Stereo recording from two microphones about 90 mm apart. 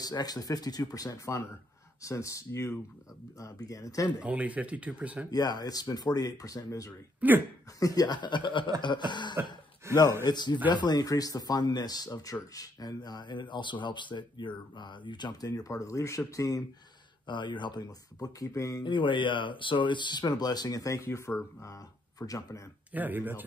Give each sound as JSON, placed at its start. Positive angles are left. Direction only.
{"t": 0.0, "sound": "speech", "side_deg": 45}
{"t": 4.2, "sound": "speech", "side_deg": -15}
{"t": 5.3, "sound": "speech", "side_deg": 50}
{"t": 7.2, "sound": "speech", "side_deg": -20}
{"t": 7.8, "sound": "speech", "side_deg": 45}
{"t": 9.8, "sound": "speech", "side_deg": -30}
{"t": 10.2, "sound": "speech", "side_deg": 55}
{"t": 17.3, "sound": "speech", "side_deg": 60}
{"t": 18.4, "sound": "speech", "side_deg": 35}
{"t": 18.9, "sound": "speech", "side_deg": 65}
{"t": 22.9, "sound": "speech", "side_deg": -20}